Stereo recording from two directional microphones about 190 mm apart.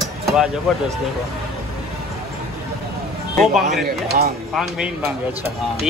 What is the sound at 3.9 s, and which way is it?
Speech, 55° right (ahead or behind).